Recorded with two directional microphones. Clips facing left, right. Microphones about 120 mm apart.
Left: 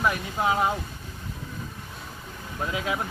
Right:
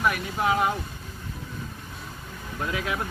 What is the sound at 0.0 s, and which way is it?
Speech, 20° left (ahead or behind).